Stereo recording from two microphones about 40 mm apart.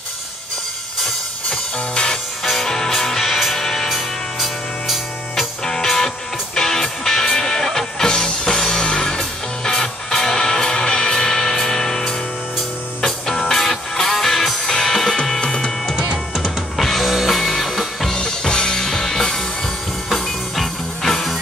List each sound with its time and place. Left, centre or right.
2.6 s music: centre
3.9 s music: centre
5.7 s music: centre
16.7 s music: centre
18.1 s music: centre